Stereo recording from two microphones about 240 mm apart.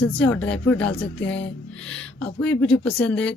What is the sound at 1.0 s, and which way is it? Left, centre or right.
Speech, left.